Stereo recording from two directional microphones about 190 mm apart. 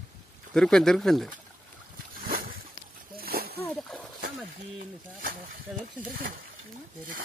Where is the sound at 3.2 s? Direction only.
55° right (ahead or behind).